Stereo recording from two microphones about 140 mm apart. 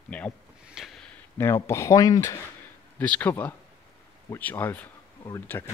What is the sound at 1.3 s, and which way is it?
Speech, 20° left (ahead or behind).